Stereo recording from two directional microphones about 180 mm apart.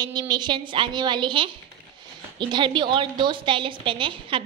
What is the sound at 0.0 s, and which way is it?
A woman's voice, 25° right (ahead or behind).